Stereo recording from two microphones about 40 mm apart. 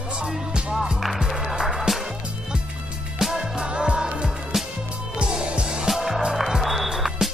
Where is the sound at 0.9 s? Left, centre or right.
Centre.